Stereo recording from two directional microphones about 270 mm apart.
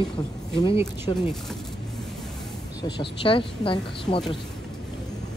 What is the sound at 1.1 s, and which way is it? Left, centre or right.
Speech, centre.